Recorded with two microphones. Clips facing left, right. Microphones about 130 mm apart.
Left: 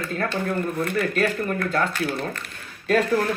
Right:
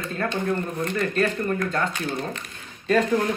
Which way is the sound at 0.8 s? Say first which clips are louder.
Left 2 dB; 55° left (ahead or behind).